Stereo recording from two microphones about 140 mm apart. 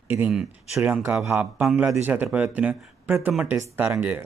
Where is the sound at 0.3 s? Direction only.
Centre (ahead or behind).